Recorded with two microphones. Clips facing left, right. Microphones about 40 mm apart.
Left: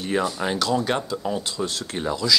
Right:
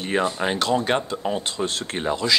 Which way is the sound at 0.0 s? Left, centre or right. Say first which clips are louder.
Right 1 dB; right.